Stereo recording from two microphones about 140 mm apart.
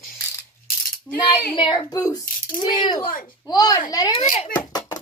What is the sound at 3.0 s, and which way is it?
Speech, 75° left (ahead or behind).